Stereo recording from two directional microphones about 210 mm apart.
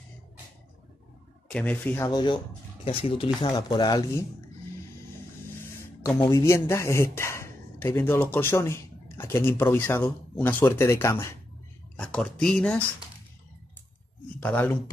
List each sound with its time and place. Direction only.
1.5 s speech: 5° left (ahead or behind)
2.0 s speech: 20° left (ahead or behind)
6.0 s speech: 20° left (ahead or behind)
14.4 s speech: 10° left (ahead or behind)